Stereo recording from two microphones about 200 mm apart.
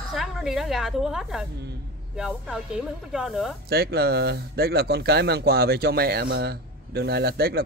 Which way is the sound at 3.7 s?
50° right (ahead or behind).